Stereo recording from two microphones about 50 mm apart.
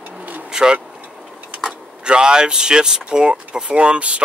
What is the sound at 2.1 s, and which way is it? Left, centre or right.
Speech, centre.